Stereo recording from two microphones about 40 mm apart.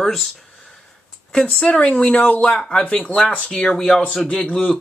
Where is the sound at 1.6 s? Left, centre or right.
Left.